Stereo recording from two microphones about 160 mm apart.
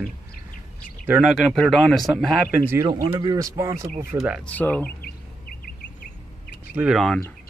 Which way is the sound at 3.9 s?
5° right (ahead or behind).